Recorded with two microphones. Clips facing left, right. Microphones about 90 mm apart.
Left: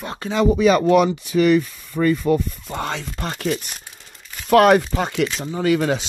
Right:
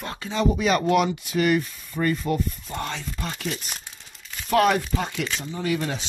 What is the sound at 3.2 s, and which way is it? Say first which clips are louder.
Speech: left 8 dB; 50° left (ahead or behind).